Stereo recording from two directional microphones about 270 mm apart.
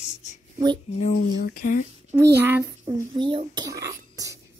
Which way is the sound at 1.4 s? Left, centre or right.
Left.